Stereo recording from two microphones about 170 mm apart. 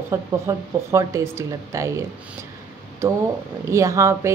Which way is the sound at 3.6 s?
15° right (ahead or behind).